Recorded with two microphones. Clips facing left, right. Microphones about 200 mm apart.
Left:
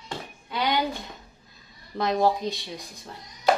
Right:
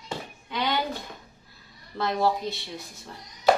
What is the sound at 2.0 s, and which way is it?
A woman's voice, 15° left (ahead or behind).